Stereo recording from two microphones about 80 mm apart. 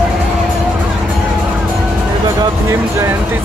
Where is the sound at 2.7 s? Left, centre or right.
Right.